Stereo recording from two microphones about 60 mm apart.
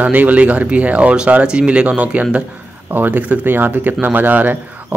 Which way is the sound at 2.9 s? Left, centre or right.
Right.